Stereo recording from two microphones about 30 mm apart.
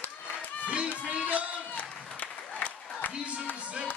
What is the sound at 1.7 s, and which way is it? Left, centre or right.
Applause, left.